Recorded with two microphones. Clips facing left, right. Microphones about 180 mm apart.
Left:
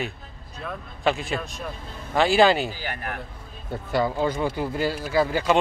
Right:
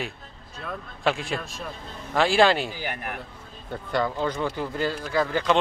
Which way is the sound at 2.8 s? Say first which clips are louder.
Even; 15° right (ahead or behind).